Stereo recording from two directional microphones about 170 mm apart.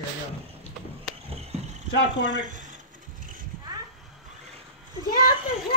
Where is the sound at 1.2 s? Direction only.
35° right (ahead or behind).